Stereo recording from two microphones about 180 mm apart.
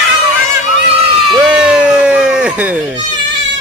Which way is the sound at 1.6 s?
5° right (ahead or behind).